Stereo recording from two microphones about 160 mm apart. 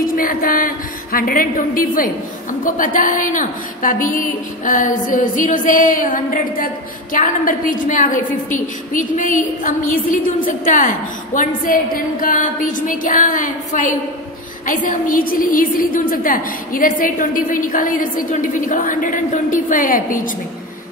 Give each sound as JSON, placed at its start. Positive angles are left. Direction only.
{"t": 0.0, "sound": "a woman's voice", "side_deg": 60}